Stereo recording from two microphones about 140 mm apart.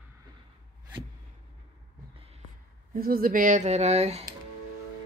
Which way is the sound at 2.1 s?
45° right (ahead or behind).